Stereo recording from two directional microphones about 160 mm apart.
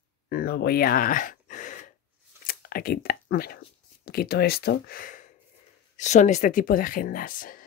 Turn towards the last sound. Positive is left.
turn(degrees=60)  # may be behind; listen again after turning